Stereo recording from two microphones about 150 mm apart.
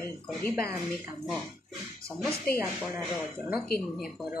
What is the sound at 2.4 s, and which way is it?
Speech, 5° left (ahead or behind).